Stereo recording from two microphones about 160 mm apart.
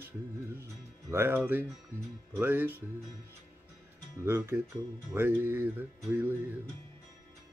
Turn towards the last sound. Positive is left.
turn(degrees=-15)  # may be behind; listen again after turning